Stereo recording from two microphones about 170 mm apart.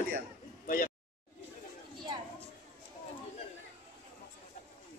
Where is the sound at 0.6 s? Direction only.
55° left (ahead or behind).